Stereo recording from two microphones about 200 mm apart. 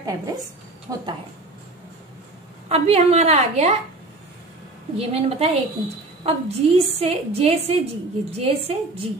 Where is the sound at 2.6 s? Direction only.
30° right (ahead or behind).